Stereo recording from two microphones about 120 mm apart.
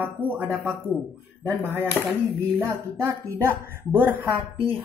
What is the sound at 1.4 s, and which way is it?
Speech, 20° right (ahead or behind).